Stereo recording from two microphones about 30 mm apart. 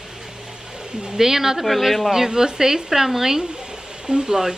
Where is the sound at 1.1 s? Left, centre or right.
Centre.